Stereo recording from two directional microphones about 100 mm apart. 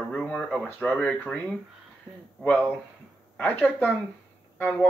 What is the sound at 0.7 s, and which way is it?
Speech, 10° left (ahead or behind).